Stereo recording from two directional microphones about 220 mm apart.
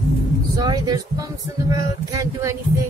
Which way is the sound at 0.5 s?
20° right (ahead or behind).